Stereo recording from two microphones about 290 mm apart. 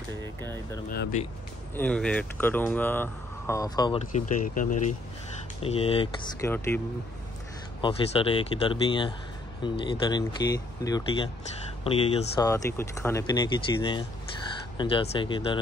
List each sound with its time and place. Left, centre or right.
0.4 s speech: centre
0.8 s speech: left
1.8 s speech: centre
4.1 s speech: left; by 6.8 s centre
7.8 s speech: centre